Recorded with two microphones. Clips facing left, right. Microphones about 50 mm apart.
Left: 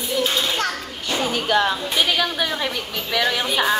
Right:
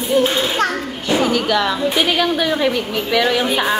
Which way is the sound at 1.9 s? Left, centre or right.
Centre.